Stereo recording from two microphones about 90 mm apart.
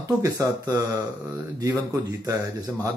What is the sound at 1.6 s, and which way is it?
Speech, 35° right (ahead or behind).